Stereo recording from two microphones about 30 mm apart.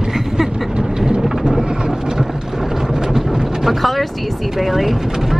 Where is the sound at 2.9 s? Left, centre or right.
Centre.